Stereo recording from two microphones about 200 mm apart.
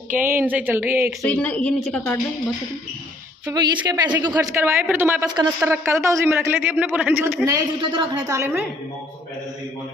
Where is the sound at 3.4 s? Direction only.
20° right (ahead or behind).